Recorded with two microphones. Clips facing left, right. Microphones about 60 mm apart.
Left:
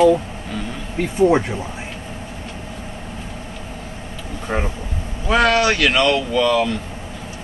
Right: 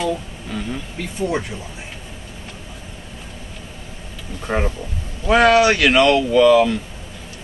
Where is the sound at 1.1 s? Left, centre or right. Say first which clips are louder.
Left 8 dB; left.